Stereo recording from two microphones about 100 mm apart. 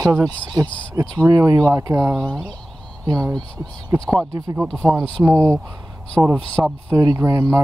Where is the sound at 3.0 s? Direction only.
35° right (ahead or behind).